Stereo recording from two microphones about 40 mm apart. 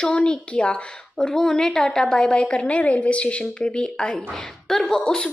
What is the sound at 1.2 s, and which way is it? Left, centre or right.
Speech, centre.